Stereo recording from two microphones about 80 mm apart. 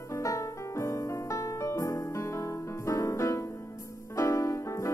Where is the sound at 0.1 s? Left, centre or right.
Left.